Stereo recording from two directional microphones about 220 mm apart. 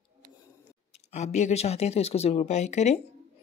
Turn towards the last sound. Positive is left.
turn(degrees=30)  # may be behind; listen again after turning